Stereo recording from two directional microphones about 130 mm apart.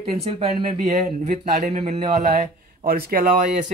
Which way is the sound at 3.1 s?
90° right.